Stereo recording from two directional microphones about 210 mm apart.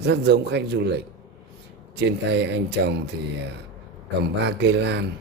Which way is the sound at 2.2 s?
55° right (ahead or behind).